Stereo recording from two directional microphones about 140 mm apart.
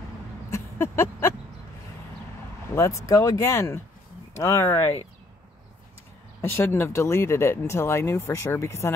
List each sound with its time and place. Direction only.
0.5 s a sound: 20° left (ahead or behind)
2.7 s speech: 20° left (ahead or behind)
6.5 s speech: 15° left (ahead or behind)